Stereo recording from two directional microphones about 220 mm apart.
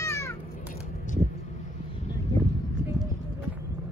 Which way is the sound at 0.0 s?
15° left (ahead or behind).